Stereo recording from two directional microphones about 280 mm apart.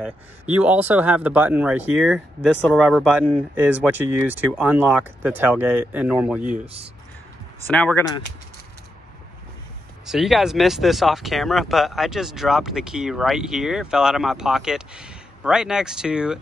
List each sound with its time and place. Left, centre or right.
0.6 s speech: centre
6.6 s speech: right
7.6 s speech: centre
10.0 s speech: centre